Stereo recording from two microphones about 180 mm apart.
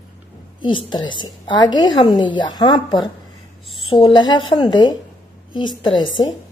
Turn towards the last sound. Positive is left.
turn(degrees=25)  # may be behind; listen again after turning